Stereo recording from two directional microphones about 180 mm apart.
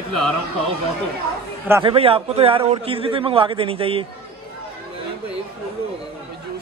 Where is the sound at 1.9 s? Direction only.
30° right (ahead or behind).